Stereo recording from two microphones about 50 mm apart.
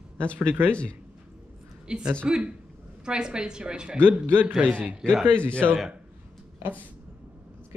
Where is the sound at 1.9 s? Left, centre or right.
Centre.